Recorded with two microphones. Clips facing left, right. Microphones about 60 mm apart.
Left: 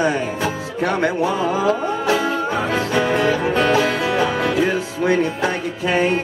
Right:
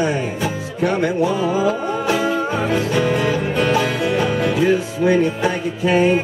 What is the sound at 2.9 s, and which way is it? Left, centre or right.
Music, left.